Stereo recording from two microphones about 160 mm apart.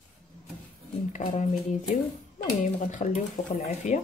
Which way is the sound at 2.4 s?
50° left (ahead or behind).